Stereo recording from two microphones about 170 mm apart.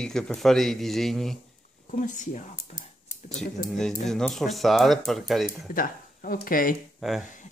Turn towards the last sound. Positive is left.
turn(degrees=0)  # may be behind; listen again after turning